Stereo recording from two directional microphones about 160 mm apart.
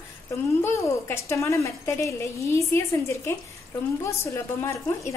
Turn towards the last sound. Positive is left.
turn(degrees=15)  # may be behind; listen again after turning